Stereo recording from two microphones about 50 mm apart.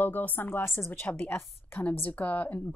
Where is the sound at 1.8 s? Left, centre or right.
Left.